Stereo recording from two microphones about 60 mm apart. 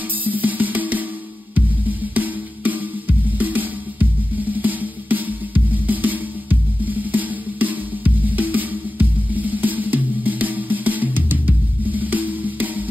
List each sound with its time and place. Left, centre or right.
0.2 s music: right